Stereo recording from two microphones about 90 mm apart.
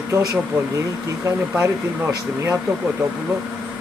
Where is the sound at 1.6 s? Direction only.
35° right (ahead or behind).